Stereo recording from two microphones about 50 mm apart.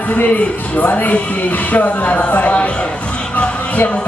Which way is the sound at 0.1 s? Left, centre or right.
Left.